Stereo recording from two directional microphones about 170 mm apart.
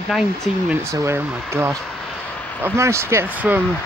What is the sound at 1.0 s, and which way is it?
Speech, 15° right (ahead or behind).